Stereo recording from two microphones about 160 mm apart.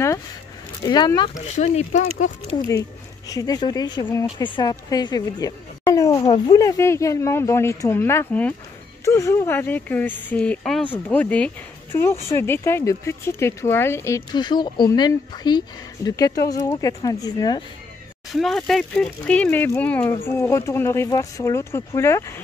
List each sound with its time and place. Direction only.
0.8 s speech: 25° left (ahead or behind)
1.5 s speech: 45° left (ahead or behind)
3.3 s speech: 25° left (ahead or behind)
18.3 s speech: centre (ahead or behind); by 22.4 s 15° left (ahead or behind)